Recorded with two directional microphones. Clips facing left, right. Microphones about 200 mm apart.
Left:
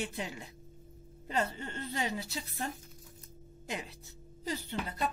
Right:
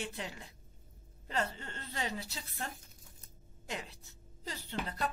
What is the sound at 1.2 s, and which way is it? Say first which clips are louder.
Speech: left 3 dB; 15° left (ahead or behind).